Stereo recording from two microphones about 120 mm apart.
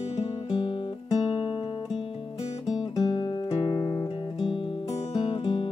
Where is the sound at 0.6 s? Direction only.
40° left (ahead or behind).